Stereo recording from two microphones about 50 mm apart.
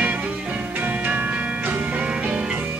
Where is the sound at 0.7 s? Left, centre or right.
Right.